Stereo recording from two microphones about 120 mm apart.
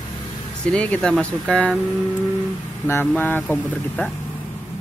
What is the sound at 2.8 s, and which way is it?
Speech, 20° left (ahead or behind).